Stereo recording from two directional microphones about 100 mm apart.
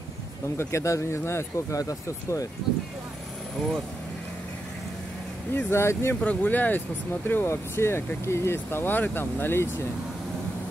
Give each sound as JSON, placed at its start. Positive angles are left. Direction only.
{"t": 0.6, "sound": "speech", "side_deg": 30}
{"t": 5.5, "sound": "speech", "side_deg": 25}